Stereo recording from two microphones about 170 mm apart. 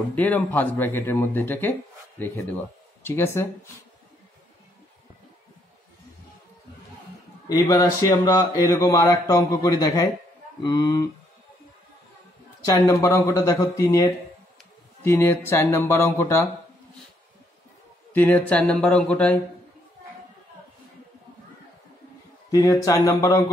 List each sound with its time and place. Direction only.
0.1 s speech: 10° left (ahead or behind)
7.4 s a man's voice: 20° left (ahead or behind)
12.6 s a man's voice: 20° left (ahead or behind)
18.1 s speech: 10° left (ahead or behind)
22.5 s a man's voice: 20° left (ahead or behind)